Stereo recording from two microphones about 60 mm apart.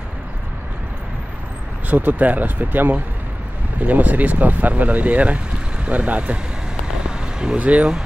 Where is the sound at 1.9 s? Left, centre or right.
Right.